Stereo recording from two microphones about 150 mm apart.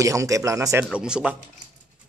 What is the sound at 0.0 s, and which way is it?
Speech, 20° right (ahead or behind).